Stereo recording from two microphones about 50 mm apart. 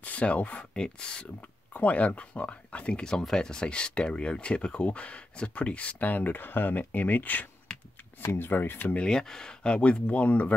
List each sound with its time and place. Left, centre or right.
0.0 s speech: left
1.7 s speech: left
8.3 s speech: left
9.0 s speech: centre; by 10.5 s left